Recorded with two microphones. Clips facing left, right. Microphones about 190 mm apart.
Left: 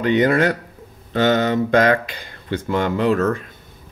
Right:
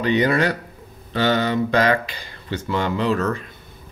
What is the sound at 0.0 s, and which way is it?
Speech, 50° left (ahead or behind).